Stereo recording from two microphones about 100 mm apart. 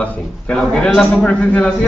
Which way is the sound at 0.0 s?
10° left (ahead or behind).